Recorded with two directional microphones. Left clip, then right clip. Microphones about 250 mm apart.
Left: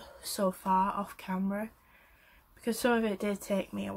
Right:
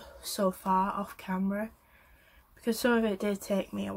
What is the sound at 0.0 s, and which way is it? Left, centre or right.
Speech, centre.